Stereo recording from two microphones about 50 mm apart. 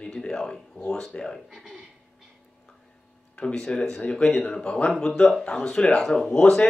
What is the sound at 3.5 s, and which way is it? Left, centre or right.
Speech, centre.